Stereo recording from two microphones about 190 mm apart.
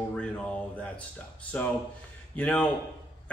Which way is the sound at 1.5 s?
10° left (ahead or behind).